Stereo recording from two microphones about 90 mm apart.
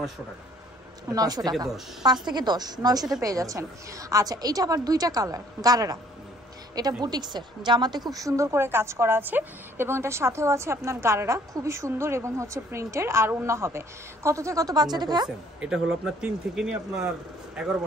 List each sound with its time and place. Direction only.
1.1 s a woman's voice: 45° right (ahead or behind)
15.2 s speech: 10° right (ahead or behind)